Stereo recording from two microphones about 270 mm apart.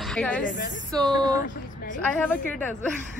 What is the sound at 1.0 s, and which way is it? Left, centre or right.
Speech, centre.